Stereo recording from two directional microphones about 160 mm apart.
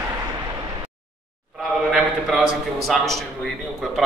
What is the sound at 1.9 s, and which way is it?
Speech, 5° right (ahead or behind).